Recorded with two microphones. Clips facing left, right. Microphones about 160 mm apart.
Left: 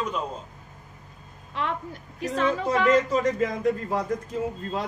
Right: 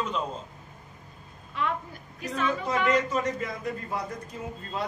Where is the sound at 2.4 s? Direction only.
30° left (ahead or behind).